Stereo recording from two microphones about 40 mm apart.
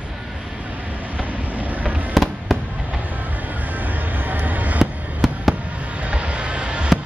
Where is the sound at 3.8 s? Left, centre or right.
Right.